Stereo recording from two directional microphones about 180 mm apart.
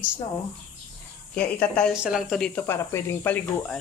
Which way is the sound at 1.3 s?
10° left (ahead or behind).